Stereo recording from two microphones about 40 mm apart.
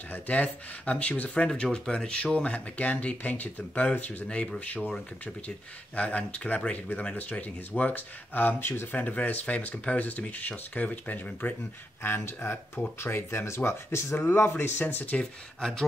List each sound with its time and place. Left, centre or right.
0.1 s speech: left
1.5 s speech: left
5.9 s speech: left
8.9 s speech: left
12.0 s speech: left
14.8 s speech: left